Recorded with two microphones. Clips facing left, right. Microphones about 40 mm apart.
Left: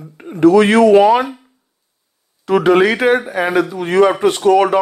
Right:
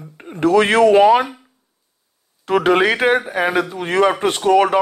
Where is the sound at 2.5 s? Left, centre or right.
Right.